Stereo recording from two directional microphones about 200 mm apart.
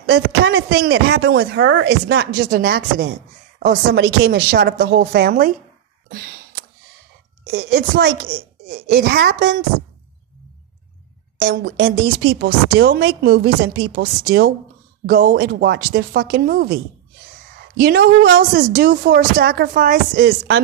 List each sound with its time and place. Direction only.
0.0 s speech: 55° right (ahead or behind)
6.0 s a sound: 55° right (ahead or behind)
7.5 s a woman's voice: 60° right (ahead or behind)
8.6 s speech: 45° right (ahead or behind)
11.4 s a woman's voice: 70° right (ahead or behind)
12.4 s speech: 50° right (ahead or behind)